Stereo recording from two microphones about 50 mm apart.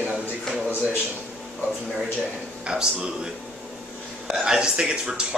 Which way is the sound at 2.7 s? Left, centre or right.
Centre.